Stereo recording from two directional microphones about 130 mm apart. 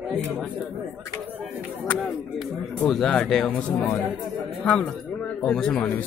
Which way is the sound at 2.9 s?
5° left (ahead or behind).